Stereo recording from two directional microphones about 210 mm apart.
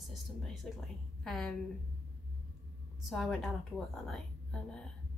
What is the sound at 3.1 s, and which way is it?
A woman's voice, centre (ahead or behind).